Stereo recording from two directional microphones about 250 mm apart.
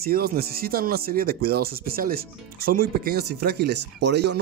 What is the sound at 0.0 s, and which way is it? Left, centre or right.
Speech, right.